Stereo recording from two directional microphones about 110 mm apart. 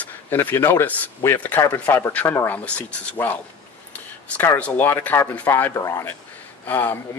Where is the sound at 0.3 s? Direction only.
20° left (ahead or behind).